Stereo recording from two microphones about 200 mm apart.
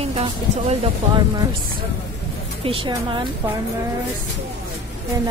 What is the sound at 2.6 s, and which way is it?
Speech, 25° right (ahead or behind).